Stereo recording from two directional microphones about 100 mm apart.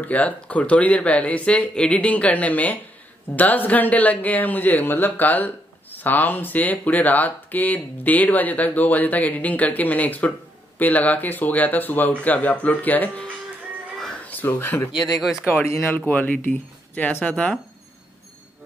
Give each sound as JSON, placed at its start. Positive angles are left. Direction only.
{"t": 0.0, "sound": "a man's voice", "side_deg": 15}
{"t": 13.9, "sound": "a sound", "side_deg": 5}
{"t": 14.2, "sound": "a man's voice", "side_deg": 20}